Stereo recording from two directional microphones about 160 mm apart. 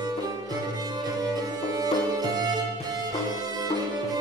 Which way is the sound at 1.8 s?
25° right (ahead or behind).